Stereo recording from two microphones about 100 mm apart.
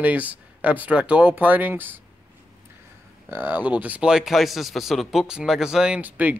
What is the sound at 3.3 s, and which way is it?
A man's voice, 20° right (ahead or behind).